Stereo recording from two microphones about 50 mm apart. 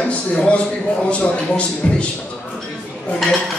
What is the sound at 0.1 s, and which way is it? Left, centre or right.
A man's voice, left.